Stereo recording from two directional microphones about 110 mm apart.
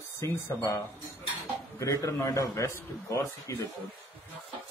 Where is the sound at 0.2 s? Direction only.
25° left (ahead or behind).